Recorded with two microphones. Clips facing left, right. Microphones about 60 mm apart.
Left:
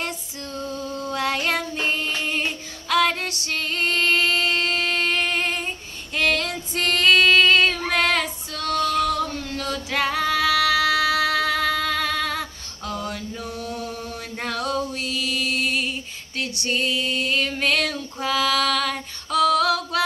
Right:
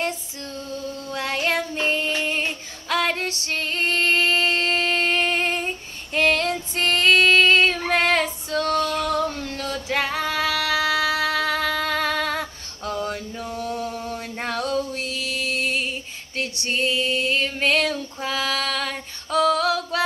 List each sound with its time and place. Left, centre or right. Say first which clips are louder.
1.1 s child singing: even; centre
2.9 s female singing: left 2 dB; right
15.0 s music: left 2 dB; right
16.3 s female singing: even; right